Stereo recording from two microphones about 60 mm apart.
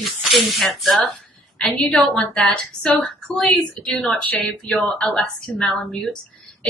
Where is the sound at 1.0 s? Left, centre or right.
Left.